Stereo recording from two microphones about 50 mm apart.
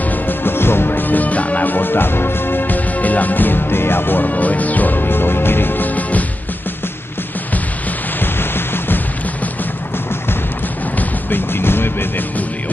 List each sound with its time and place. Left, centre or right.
0.0 s music: left
8.2 s music: left
11.0 s music: left